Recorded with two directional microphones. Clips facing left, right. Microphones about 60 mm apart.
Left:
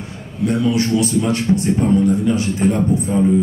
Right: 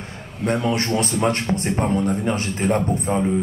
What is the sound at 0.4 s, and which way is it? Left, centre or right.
A man's voice, right.